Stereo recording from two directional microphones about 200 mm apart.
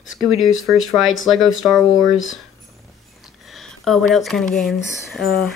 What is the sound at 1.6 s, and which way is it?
Speech, centre (ahead or behind).